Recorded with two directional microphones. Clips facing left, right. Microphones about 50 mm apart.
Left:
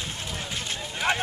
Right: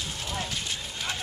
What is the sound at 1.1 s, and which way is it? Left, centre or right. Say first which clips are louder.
Speech: left 10 dB; left.